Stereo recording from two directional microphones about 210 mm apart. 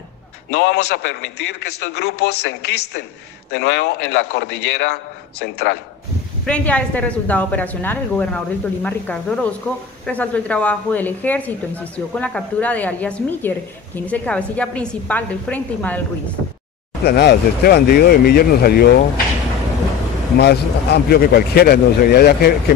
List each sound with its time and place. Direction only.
0.5 s a man's voice: 55° left (ahead or behind)
3.5 s a man's voice: 55° left (ahead or behind)
6.4 s a woman's voice: 5° left (ahead or behind)
17.0 s a man's voice: 50° left (ahead or behind)
20.3 s a man's voice: 50° left (ahead or behind)